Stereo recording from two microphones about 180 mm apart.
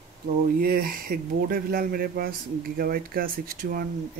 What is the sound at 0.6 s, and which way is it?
Speech, 55° right (ahead or behind).